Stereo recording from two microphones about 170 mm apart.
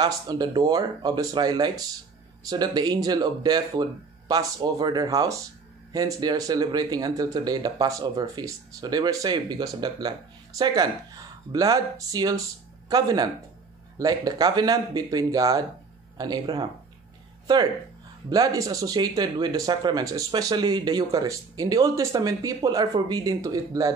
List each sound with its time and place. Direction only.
0.0 s speech: 25° right (ahead or behind)
18.3 s speech: 20° right (ahead or behind)